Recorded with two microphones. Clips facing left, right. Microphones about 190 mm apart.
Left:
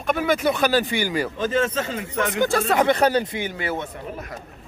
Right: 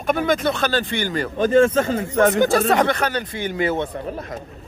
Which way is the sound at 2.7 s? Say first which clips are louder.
Even; 15° left (ahead or behind).